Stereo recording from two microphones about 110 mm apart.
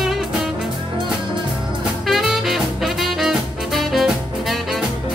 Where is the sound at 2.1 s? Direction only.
Centre (ahead or behind).